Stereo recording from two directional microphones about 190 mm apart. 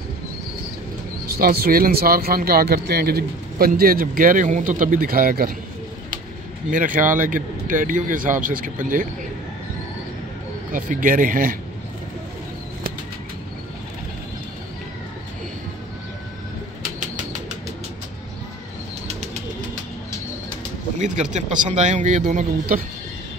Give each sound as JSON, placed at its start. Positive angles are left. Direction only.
{"t": 1.4, "sound": "a man's voice", "side_deg": -50}
{"t": 6.7, "sound": "a man's voice", "side_deg": -45}
{"t": 10.7, "sound": "a man's voice", "side_deg": -45}
{"t": 21.0, "sound": "speech", "side_deg": -40}